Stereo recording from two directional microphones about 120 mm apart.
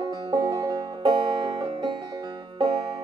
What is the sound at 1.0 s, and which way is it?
Music, 40° right (ahead or behind).